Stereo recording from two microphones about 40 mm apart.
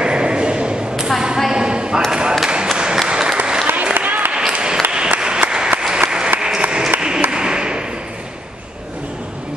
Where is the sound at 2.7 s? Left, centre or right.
Right.